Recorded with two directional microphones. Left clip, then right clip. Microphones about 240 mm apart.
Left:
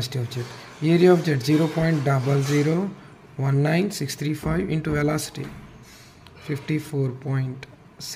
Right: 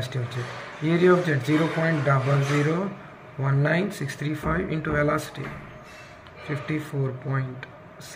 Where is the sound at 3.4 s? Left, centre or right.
Left.